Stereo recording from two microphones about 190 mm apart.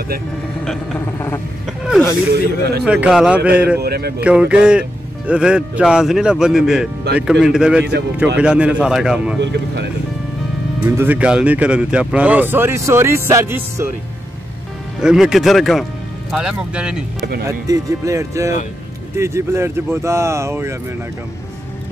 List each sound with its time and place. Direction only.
0.7 s a sound: 10° left (ahead or behind)
2.3 s speech: 60° right (ahead or behind)
2.8 s speech: 5° right (ahead or behind)
3.8 s speech: 55° right (ahead or behind)
4.2 s speech: 5° right (ahead or behind)
9.4 s speech: 65° right (ahead or behind)
10.8 s speech: 10° right (ahead or behind)
15.0 s speech: 5° right (ahead or behind)
17.5 s speech: 20° right (ahead or behind)